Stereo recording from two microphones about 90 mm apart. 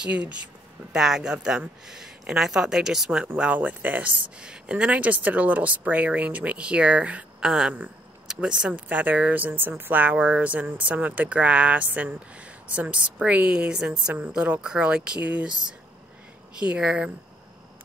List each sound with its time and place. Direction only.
0.0 s speech: 15° right (ahead or behind)
16.5 s speech: 10° right (ahead or behind)